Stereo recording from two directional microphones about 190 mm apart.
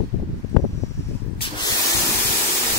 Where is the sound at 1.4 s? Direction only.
30° left (ahead or behind).